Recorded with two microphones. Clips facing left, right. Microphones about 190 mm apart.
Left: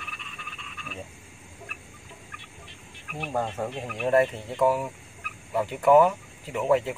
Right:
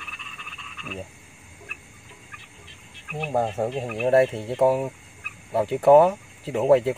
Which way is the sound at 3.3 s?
40° right (ahead or behind).